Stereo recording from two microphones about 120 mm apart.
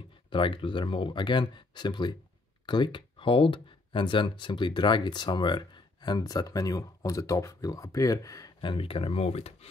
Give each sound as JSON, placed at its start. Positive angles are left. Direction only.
{"t": 0.3, "sound": "speech", "side_deg": 45}
{"t": 8.5, "sound": "speech", "side_deg": 45}